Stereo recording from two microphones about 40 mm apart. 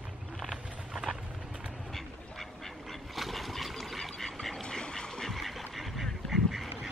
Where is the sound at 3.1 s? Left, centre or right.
Centre.